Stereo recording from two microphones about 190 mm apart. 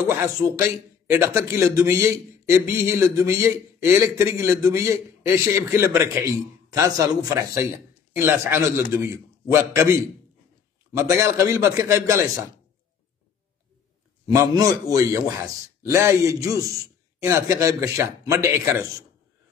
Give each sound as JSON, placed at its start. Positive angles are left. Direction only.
{"t": 0.0, "sound": "a man's voice", "side_deg": -15}
{"t": 14.2, "sound": "a man's voice", "side_deg": -20}